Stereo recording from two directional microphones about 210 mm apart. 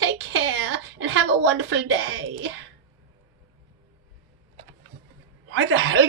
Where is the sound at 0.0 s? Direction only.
60° right (ahead or behind).